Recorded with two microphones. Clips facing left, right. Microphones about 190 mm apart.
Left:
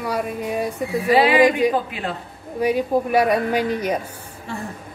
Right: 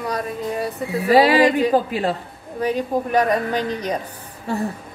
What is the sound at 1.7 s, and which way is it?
Speech, 35° right (ahead or behind).